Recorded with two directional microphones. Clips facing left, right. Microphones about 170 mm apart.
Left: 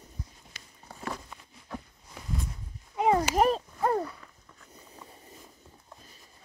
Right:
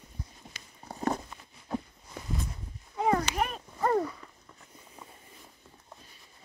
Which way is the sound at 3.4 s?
35° left (ahead or behind).